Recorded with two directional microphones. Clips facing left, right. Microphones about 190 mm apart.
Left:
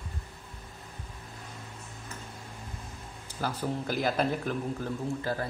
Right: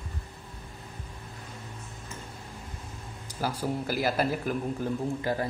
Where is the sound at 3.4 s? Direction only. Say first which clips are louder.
Right 2 dB; 10° right (ahead or behind).